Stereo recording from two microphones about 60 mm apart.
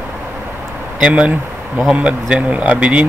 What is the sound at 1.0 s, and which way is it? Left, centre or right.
Speech, centre.